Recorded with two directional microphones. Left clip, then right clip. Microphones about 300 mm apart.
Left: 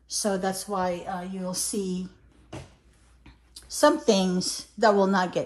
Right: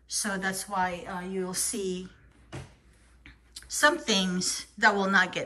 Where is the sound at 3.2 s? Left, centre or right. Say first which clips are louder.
Right 2 dB; centre.